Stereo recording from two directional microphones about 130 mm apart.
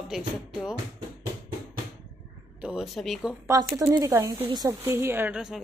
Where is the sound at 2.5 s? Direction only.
5° right (ahead or behind).